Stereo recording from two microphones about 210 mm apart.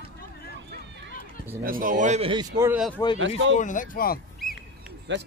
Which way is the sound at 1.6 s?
40° right (ahead or behind).